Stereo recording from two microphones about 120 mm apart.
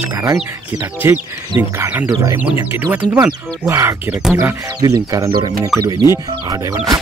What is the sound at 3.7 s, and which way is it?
Speech, 20° right (ahead or behind).